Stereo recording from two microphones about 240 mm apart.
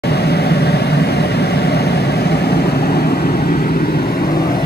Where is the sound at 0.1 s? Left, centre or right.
Left.